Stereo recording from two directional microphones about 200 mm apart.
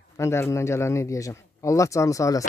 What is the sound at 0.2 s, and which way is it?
Speech, 15° left (ahead or behind).